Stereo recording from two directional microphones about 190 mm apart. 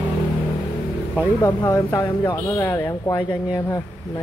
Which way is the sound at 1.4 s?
20° left (ahead or behind).